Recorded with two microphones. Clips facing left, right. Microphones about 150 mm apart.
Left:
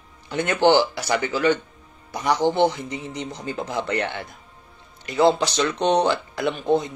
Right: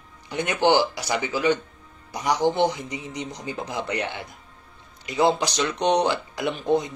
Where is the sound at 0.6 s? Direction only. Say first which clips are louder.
Left 2 dB; 15° right (ahead or behind).